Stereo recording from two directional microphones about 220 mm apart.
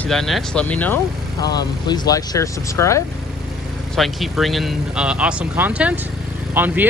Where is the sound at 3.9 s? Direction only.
Centre (ahead or behind).